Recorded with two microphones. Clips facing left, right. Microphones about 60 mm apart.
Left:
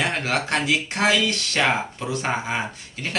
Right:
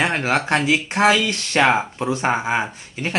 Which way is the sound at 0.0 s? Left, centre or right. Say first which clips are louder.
Right 4 dB; right.